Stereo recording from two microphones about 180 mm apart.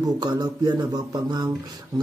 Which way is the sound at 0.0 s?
20° right (ahead or behind).